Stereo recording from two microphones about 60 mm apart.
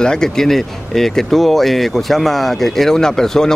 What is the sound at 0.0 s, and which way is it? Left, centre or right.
Speech, centre.